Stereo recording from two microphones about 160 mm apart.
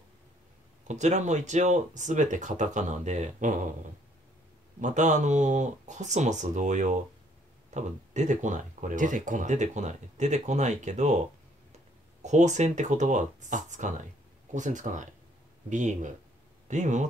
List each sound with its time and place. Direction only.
0.8 s speech: 50° right (ahead or behind)
4.7 s speech: 50° right (ahead or behind)
12.2 s speech: 45° right (ahead or behind)